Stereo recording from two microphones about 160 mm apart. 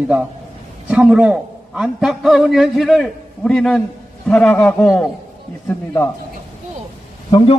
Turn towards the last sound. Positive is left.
turn(degrees=30)  # may be behind; listen again after turning